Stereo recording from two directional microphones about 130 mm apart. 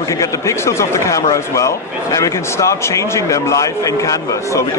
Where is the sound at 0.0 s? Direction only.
25° left (ahead or behind).